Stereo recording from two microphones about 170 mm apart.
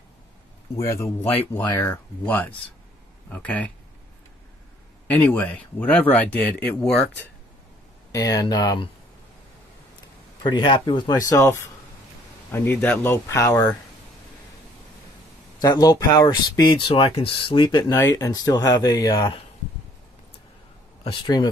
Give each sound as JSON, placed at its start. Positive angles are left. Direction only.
{"t": 0.7, "sound": "speech", "side_deg": 15}
{"t": 5.0, "sound": "speech", "side_deg": 10}
{"t": 8.1, "sound": "speech", "side_deg": 20}
{"t": 10.5, "sound": "speech", "side_deg": 25}
{"t": 15.6, "sound": "speech", "side_deg": 25}
{"t": 21.0, "sound": "speech", "side_deg": 30}